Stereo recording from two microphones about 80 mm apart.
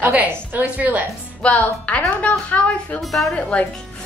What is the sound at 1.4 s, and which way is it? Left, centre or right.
Speech, centre.